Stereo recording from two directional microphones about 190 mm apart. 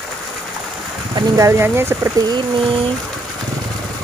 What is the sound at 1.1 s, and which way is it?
Speech, 15° right (ahead or behind).